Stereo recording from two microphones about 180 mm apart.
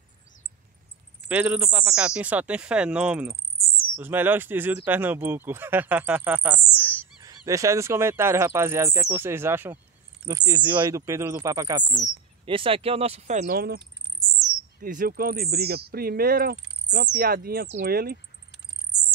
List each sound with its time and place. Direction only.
1.3 s speech: 10° right (ahead or behind)
12.4 s speech: 30° right (ahead or behind)
13.5 s speech: 60° right (ahead or behind)
14.4 s bird: centre (ahead or behind)
14.8 s speech: 50° right (ahead or behind)